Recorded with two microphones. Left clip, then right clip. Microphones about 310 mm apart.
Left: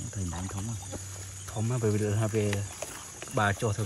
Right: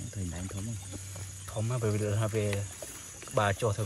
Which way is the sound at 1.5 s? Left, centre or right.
Centre.